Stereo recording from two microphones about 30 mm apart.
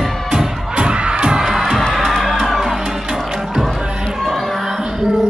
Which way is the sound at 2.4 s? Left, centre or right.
Centre.